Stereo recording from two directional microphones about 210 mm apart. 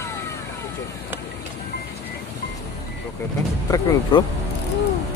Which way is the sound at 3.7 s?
20° left (ahead or behind).